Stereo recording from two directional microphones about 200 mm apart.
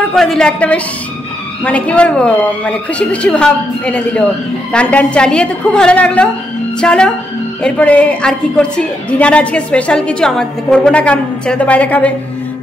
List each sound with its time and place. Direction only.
0.1 s a woman's voice: centre (ahead or behind)